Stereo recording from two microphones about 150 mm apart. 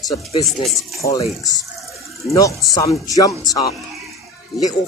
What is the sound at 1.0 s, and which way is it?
Speech, 20° left (ahead or behind).